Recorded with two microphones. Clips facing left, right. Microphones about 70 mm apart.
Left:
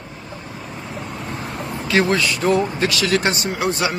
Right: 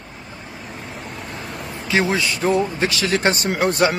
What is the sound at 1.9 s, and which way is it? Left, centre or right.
Speech, centre.